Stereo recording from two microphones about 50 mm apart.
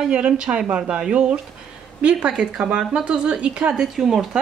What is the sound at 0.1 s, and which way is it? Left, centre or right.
Speech, centre.